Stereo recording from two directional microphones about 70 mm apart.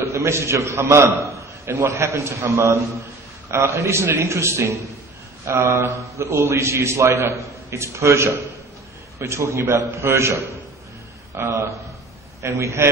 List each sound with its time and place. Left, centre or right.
0.1 s a man's voice: right